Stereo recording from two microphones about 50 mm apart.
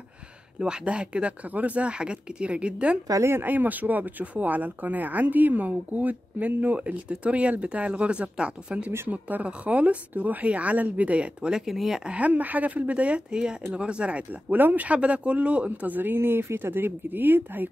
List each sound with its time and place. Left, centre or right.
0.6 s a woman's voice: centre
3.3 s a woman's voice: right
11.6 s speech: centre
12.1 s a woman's voice: right
15.9 s speech: right